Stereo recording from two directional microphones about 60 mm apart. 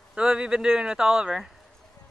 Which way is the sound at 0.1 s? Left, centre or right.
Centre.